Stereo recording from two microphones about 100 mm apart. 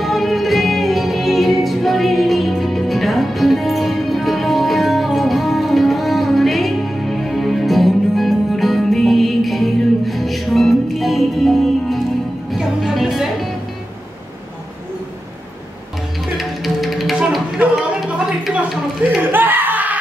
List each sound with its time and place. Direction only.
0.0 s music: centre (ahead or behind)
16.3 s music: centre (ahead or behind)
17.6 s a sound: 10° right (ahead or behind)
19.3 s music: 20° right (ahead or behind)